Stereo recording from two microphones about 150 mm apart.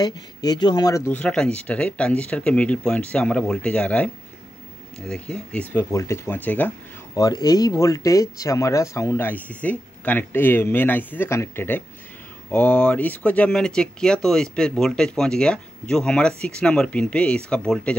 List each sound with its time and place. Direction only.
0.0 s speech: 25° left (ahead or behind); by 6.7 s 10° left (ahead or behind)
7.2 s speech: 25° left (ahead or behind); by 17.9 s 5° left (ahead or behind)